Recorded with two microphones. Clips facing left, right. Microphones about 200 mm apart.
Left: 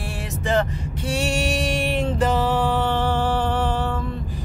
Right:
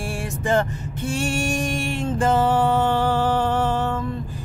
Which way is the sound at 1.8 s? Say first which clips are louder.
Left 2 dB; 50° right (ahead or behind).